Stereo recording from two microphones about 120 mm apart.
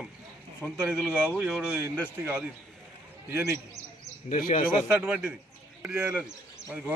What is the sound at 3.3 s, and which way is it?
Speech, 20° right (ahead or behind).